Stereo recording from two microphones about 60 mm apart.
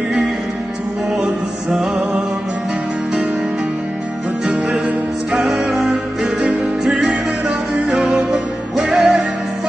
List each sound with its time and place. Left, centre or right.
1.2 s music: centre
5.5 s music: centre
6.4 s music: centre